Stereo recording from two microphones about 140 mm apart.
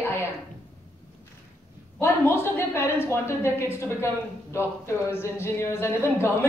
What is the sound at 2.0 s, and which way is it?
Speech, 20° left (ahead or behind).